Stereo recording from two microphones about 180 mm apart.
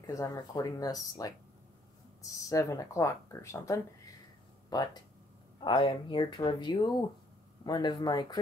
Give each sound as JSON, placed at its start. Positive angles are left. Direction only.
{"t": 0.0, "sound": "speech", "side_deg": 15}